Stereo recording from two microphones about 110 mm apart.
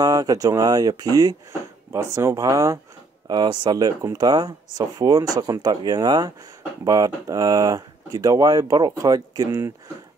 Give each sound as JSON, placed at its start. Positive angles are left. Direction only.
{"t": 0.0, "sound": "speech", "side_deg": -35}
{"t": 3.3, "sound": "speech", "side_deg": -40}